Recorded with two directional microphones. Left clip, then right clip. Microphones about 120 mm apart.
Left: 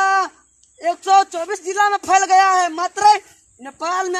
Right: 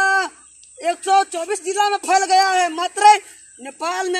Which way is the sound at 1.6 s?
10° left (ahead or behind).